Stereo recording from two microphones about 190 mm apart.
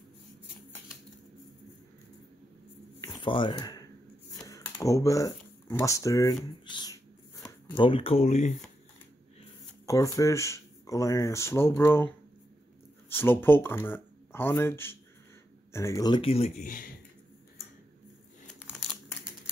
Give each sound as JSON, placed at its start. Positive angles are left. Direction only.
{"t": 3.3, "sound": "speech", "side_deg": 25}
{"t": 6.6, "sound": "a sound", "side_deg": 25}
{"t": 7.7, "sound": "speech", "side_deg": 25}
{"t": 9.8, "sound": "speech", "side_deg": 15}
{"t": 13.1, "sound": "speech", "side_deg": 10}